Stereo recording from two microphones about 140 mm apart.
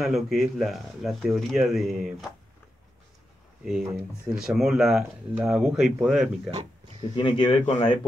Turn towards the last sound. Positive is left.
turn(degrees=40)  # may be behind; listen again after turning